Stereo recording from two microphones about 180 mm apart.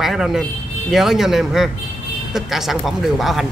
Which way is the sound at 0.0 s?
Centre (ahead or behind).